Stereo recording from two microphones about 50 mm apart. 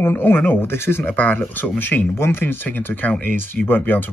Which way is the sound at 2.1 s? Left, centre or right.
Left.